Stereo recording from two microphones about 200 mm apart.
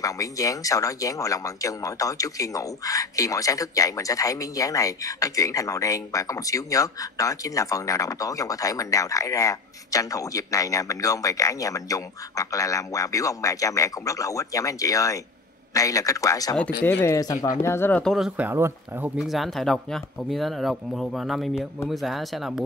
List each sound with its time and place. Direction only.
0.0 s speech: 15° left (ahead or behind); by 22.6 s centre (ahead or behind)